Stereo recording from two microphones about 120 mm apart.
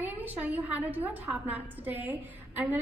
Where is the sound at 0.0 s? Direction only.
15° right (ahead or behind).